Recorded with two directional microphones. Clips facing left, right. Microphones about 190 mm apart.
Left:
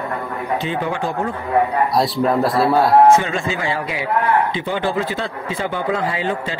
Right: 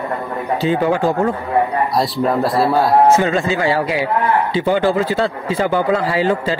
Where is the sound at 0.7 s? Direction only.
40° right (ahead or behind).